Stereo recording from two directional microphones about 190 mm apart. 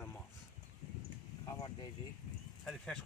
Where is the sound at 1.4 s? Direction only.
25° left (ahead or behind).